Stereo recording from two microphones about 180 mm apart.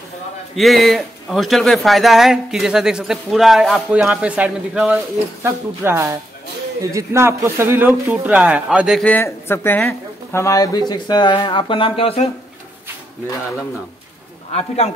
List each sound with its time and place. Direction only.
0.6 s a man's voice: centre (ahead or behind)
9.1 s speech: 15° left (ahead or behind); by 12.3 s 30° left (ahead or behind)